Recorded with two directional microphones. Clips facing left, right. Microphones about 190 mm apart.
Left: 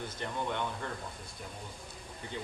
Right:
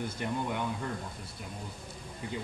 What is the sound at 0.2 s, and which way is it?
Speech, 10° right (ahead or behind).